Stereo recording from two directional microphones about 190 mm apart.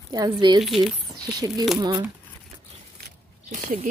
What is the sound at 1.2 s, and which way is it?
Speech, 20° right (ahead or behind).